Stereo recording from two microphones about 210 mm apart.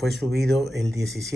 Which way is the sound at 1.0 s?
55° right (ahead or behind).